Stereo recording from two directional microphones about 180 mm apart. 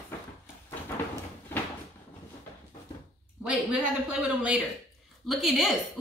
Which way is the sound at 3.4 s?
5° right (ahead or behind).